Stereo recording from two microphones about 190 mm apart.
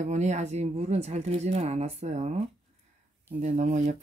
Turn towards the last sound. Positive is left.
turn(degrees=-40)  # may be behind; listen again after turning